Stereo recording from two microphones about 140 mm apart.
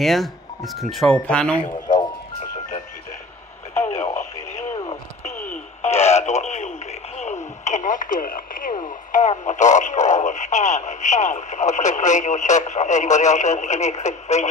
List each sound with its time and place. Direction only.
0.0 s speech: centre (ahead or behind)
4.1 s radio: 55° left (ahead or behind)
5.8 s a sound: 50° left (ahead or behind)
7.6 s radio: 60° left (ahead or behind); by 8.7 s 80° left
8.7 s radio: 60° left (ahead or behind)
9.4 s speech: 60° left (ahead or behind)